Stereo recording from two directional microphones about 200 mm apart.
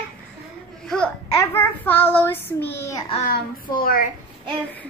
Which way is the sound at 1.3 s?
10° left (ahead or behind).